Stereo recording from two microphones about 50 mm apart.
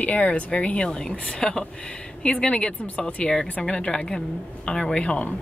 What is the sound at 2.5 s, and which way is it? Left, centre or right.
A woman's voice, left.